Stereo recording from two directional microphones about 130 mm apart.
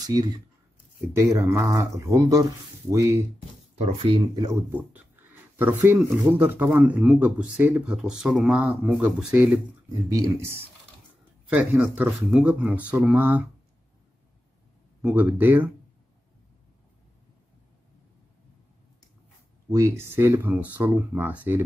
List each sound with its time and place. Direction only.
0.0 s speech: 30° right (ahead or behind)
4.5 s speech: 15° right (ahead or behind)
9.8 s speech: 30° right (ahead or behind)
11.4 s speech: 5° right (ahead or behind)
15.0 s speech: 10° right (ahead or behind)
19.7 s speech: 20° right (ahead or behind)